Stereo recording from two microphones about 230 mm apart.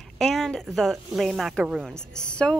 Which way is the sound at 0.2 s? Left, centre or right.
Centre.